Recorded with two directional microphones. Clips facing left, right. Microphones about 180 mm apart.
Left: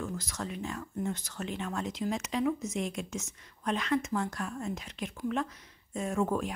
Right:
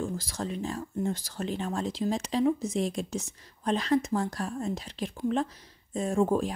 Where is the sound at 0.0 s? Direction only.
30° right (ahead or behind).